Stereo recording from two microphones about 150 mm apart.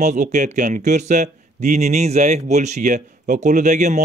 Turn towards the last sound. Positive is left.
turn(degrees=-55)  # may be behind; listen again after turning